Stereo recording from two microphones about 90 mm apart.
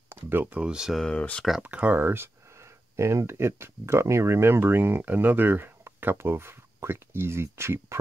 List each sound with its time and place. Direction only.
0.1 s speech: 25° right (ahead or behind); by 1.0 s 5° right (ahead or behind)
1.0 s speech: 10° left (ahead or behind)
1.6 s speech: 15° right (ahead or behind)